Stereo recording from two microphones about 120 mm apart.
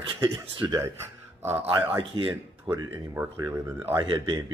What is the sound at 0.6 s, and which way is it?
Speech, 30° right (ahead or behind).